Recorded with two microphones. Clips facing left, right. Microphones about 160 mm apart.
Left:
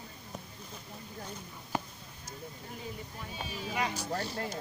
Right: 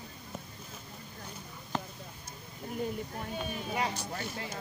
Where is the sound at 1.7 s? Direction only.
10° left (ahead or behind).